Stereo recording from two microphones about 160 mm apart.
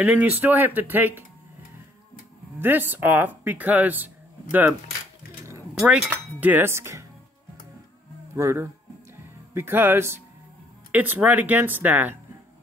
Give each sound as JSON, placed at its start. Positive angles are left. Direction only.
{"t": 0.0, "sound": "speech", "side_deg": -10}
{"t": 2.6, "sound": "speech", "side_deg": -10}
{"t": 5.8, "sound": "speech", "side_deg": -10}
{"t": 8.4, "sound": "speech", "side_deg": -15}